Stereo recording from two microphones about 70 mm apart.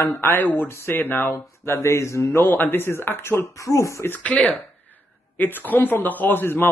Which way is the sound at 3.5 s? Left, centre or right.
Left.